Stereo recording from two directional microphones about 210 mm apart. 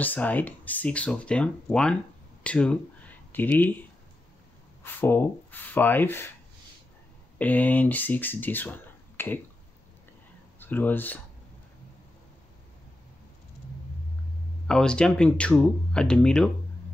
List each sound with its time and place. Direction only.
0.0 s speech: 10° left (ahead or behind)
4.8 s speech: 10° left (ahead or behind)
7.3 s speech: 10° left (ahead or behind)
10.6 s speech: 10° left (ahead or behind)
14.7 s speech: 5° left (ahead or behind)